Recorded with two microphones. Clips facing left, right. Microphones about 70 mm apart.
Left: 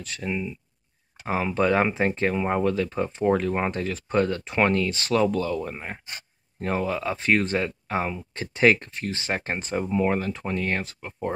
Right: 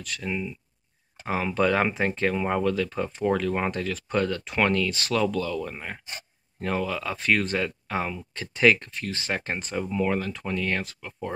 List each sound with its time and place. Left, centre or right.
0.2 s speech: centre; by 11.3 s left